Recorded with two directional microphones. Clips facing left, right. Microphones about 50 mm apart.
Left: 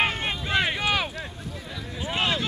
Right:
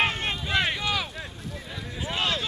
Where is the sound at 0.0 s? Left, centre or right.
Centre.